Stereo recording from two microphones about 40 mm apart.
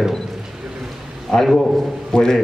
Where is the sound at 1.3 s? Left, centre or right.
Centre.